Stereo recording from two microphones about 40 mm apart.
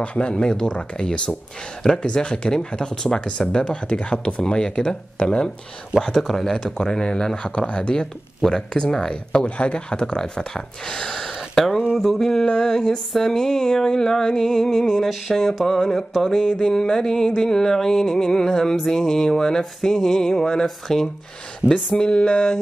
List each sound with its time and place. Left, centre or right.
0.0 s speech: left
5.9 s music: centre
7.4 s speech: left
8.5 s music: centre
9.4 s speech: left
10.5 s music: centre
11.6 s a sound: centre
12.0 s music: centre
15.0 s a sound: centre
15.6 s music: centre
16.5 s music: centre
22.2 s speech: left